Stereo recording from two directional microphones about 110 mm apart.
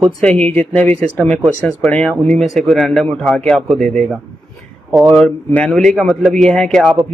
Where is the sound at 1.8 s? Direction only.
10° left (ahead or behind).